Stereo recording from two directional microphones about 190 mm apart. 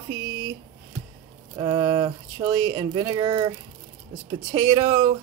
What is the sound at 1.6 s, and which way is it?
Speech, 20° right (ahead or behind).